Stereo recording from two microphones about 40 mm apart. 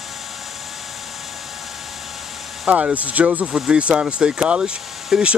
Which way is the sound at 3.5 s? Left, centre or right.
Right.